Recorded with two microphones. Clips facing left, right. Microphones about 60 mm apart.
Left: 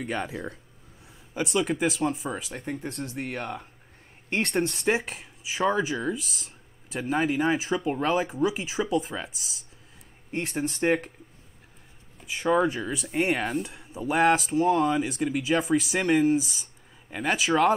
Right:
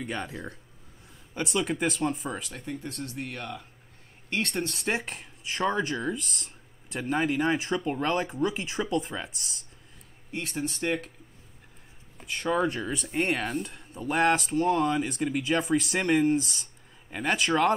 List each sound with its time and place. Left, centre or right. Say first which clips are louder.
0.0 s speech: left 3 dB; centre
1.3 s speech: left 3 dB; centre
3.3 s speech: left 4 dB; left
4.6 s speech: left 4 dB; centre
12.3 s speech: left 3 dB; centre